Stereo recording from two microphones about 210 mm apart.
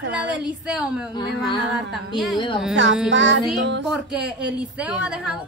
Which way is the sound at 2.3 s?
25° left (ahead or behind).